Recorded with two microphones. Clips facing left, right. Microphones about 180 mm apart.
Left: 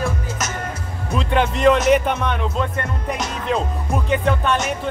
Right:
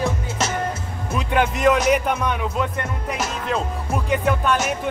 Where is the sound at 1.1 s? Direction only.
10° right (ahead or behind).